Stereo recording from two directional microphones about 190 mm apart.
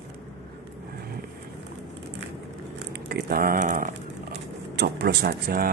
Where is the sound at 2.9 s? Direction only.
55° right (ahead or behind).